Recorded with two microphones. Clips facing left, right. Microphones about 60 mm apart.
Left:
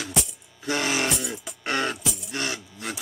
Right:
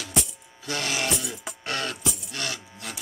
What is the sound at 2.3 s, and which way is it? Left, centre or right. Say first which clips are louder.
Music: left 3 dB; left.